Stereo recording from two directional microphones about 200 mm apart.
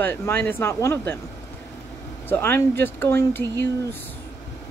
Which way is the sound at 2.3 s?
10° left (ahead or behind).